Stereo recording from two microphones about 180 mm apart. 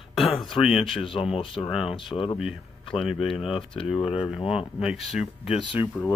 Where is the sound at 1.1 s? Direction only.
30° left (ahead or behind).